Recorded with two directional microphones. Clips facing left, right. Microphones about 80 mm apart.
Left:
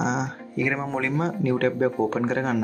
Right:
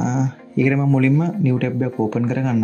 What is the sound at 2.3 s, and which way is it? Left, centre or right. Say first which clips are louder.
Speech: right 3 dB; left.